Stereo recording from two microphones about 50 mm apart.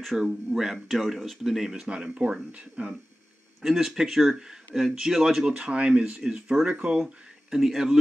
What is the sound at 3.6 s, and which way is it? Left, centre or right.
Speech, centre.